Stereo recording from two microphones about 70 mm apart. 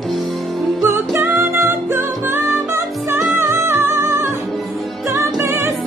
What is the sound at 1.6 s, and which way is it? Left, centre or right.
Music, right.